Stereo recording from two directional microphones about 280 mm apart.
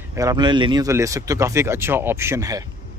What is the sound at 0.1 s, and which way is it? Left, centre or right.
A man's voice, centre.